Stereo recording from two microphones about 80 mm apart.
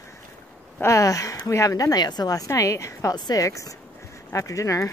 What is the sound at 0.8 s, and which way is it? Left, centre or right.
Speech, left.